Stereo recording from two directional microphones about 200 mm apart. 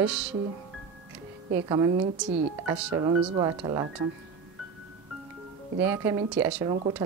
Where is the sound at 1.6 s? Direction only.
20° right (ahead or behind).